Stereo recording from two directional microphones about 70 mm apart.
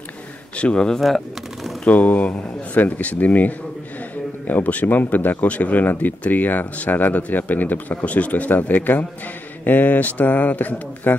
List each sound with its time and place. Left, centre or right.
0.6 s speech: centre
1.0 s a sound: centre
1.9 s speech: left